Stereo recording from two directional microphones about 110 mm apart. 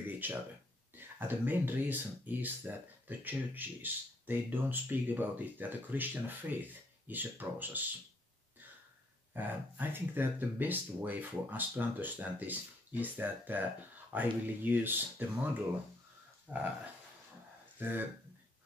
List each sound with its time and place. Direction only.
0.2 s speech: 15° right (ahead or behind)
9.3 s speech: 15° right (ahead or behind)
17.7 s speech: 20° right (ahead or behind)